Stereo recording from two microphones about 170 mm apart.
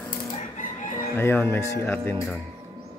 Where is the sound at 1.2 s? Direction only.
15° left (ahead or behind).